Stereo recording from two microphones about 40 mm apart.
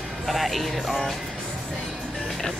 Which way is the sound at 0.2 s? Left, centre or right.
Centre.